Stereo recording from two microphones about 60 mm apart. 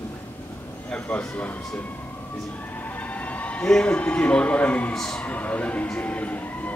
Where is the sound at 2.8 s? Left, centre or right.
Left.